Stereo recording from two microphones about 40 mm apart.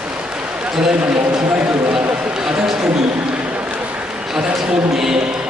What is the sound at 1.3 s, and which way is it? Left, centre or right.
Speech, centre.